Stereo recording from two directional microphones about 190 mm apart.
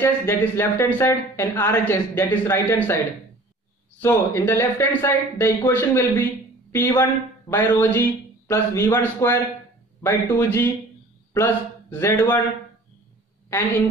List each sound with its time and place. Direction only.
0.0 s speech: 10° left (ahead or behind)
4.0 s a woman's voice: 10° left (ahead or behind)